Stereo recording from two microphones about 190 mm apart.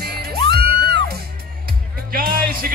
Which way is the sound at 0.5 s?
55° right (ahead or behind).